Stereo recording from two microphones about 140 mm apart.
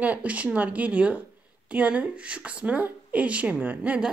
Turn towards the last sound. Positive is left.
turn(degrees=-10)  # may be behind; listen again after turning